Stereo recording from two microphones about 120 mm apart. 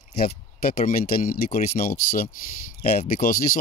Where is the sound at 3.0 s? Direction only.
75° left (ahead or behind).